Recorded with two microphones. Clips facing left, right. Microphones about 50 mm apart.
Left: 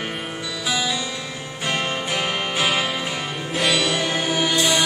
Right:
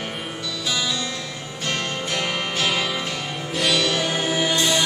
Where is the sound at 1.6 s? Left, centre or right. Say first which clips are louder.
Left 2 dB; centre.